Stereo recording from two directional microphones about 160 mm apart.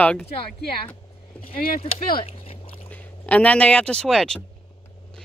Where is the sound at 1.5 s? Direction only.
65° left (ahead or behind).